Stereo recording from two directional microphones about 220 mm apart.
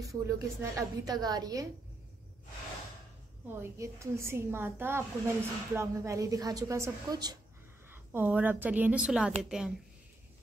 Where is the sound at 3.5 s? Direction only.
10° right (ahead or behind).